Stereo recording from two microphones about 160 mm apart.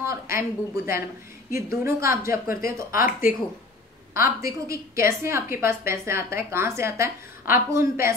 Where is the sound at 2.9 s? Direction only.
60° left (ahead or behind).